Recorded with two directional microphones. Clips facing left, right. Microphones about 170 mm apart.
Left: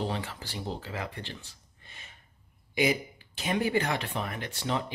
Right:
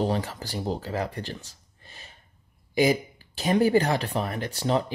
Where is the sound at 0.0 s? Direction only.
40° right (ahead or behind).